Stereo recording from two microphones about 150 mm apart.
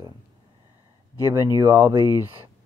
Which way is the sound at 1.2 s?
20° right (ahead or behind).